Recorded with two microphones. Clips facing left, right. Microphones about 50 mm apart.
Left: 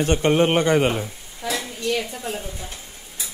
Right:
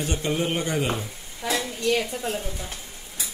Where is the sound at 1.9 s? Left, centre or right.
Centre.